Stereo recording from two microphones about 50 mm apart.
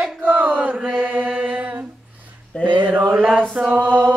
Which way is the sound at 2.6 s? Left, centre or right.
Right.